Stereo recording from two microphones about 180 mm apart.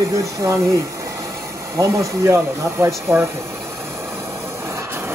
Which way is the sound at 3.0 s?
15° right (ahead or behind).